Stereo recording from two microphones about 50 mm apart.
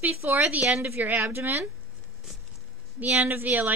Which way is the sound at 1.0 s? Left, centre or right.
Right.